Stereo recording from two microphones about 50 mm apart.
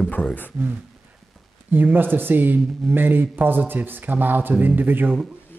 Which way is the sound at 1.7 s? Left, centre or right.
Right.